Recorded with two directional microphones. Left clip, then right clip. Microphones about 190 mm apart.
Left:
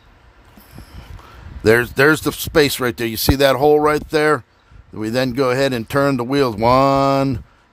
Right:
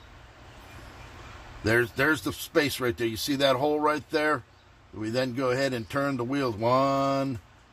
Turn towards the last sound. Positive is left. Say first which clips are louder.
# left 11 dB
turn(degrees=55)  # may be behind; listen again after turning